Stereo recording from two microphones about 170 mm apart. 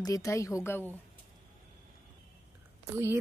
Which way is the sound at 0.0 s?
20° left (ahead or behind).